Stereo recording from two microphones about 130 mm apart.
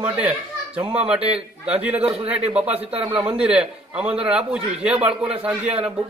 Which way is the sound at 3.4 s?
10° right (ahead or behind).